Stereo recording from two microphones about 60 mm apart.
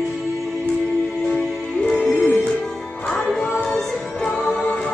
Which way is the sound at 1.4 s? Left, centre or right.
Centre.